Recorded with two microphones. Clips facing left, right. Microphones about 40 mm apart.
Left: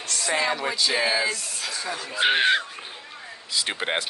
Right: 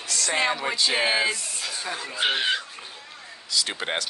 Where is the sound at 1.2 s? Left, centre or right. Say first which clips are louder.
Even; centre.